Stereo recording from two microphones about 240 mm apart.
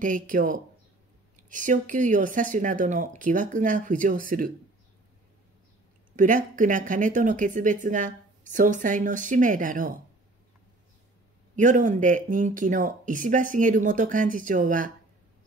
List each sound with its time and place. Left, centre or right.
0.0 s speech: right
6.1 s speech: right
11.5 s speech: right